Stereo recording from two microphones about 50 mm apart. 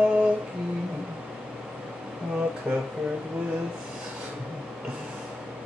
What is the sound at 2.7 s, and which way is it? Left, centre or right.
Speech, right.